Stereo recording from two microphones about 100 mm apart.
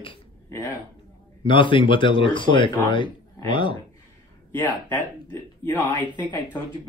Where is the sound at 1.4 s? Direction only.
55° left (ahead or behind).